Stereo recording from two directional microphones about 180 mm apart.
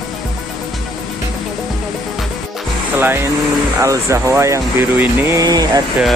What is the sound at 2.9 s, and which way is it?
Speech, 10° right (ahead or behind).